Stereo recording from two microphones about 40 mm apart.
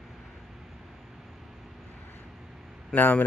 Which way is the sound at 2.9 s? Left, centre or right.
Left.